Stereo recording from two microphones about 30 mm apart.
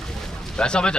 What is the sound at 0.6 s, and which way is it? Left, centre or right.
Speech, left.